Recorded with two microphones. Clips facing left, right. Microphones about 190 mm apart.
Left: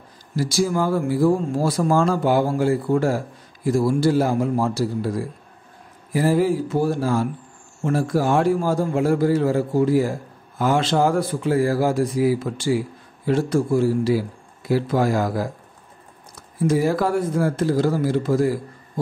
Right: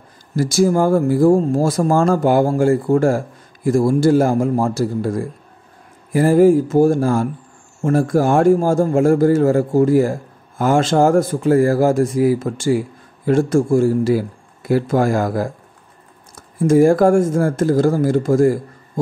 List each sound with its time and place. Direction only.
0.4 s speech: 50° right (ahead or behind)